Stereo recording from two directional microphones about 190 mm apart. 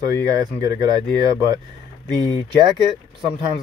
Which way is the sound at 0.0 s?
20° right (ahead or behind).